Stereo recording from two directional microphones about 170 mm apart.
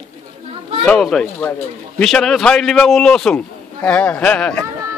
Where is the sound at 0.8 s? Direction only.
5° left (ahead or behind).